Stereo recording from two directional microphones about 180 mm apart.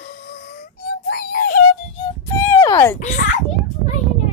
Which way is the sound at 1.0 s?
55° left (ahead or behind).